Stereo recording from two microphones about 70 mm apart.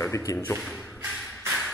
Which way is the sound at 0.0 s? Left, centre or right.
Left.